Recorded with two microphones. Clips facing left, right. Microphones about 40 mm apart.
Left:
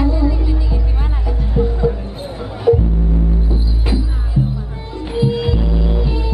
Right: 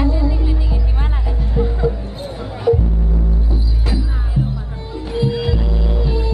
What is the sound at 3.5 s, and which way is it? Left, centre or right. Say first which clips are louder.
Music: left 2 dB; left.